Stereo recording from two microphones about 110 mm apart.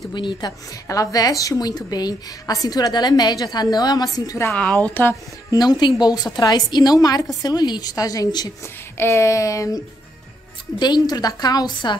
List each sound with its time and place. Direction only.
0.1 s a woman's voice: 45° left (ahead or behind); by 4.6 s 30° left (ahead or behind)
4.6 s a woman's voice: 15° left (ahead or behind)
5.5 s a woman's voice: 40° left (ahead or behind)
8.9 s a sound: 25° left (ahead or behind)
10.8 s a woman's voice: 40° left (ahead or behind)